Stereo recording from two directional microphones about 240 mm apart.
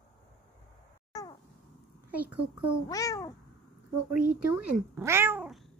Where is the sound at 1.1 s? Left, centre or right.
Centre.